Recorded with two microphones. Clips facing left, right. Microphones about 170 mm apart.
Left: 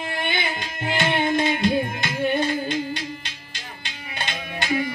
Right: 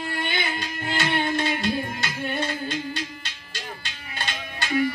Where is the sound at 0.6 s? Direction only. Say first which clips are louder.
Left 2 dB; 20° left (ahead or behind).